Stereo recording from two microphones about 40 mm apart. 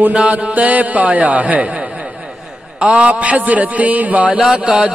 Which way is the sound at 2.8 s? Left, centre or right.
Right.